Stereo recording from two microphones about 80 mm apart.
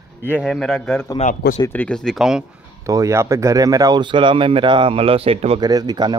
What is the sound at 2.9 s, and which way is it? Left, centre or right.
Speech, right.